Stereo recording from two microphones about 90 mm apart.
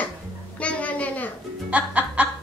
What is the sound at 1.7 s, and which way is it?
Speech, 15° right (ahead or behind).